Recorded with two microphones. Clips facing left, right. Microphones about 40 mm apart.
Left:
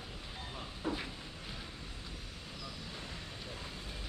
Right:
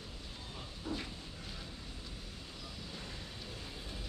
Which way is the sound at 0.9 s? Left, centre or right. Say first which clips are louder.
Left 3 dB; left.